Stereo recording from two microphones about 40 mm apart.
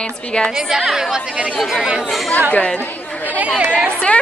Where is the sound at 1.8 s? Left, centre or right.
Centre.